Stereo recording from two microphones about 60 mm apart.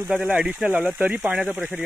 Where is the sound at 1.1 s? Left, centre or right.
Right.